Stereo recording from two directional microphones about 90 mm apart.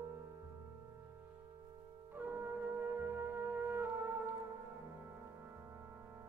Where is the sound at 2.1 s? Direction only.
20° right (ahead or behind).